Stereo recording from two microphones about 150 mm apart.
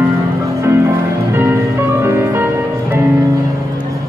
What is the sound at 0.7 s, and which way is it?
Music, 15° right (ahead or behind).